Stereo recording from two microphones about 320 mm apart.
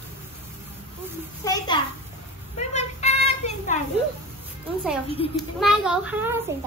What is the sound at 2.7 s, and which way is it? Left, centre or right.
Child singing, left.